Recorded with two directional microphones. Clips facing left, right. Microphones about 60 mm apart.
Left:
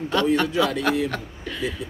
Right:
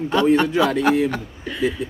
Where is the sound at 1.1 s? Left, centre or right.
Centre.